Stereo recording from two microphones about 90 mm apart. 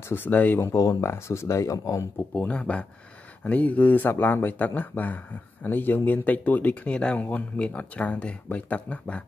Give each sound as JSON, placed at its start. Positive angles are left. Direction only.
{"t": 0.1, "sound": "speech", "side_deg": 20}
{"t": 2.3, "sound": "speech", "side_deg": 15}